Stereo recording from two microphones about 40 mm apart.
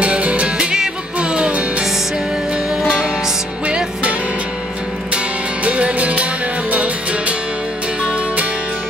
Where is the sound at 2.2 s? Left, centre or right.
Right.